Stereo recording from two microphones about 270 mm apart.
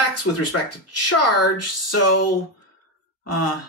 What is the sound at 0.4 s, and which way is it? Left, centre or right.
Speech, left.